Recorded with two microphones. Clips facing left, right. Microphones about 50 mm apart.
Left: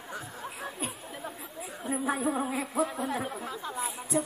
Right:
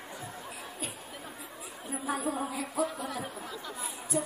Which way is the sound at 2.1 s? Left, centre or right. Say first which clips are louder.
Left 1 dB; left.